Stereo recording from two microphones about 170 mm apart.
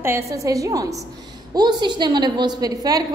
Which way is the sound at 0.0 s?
15° right (ahead or behind).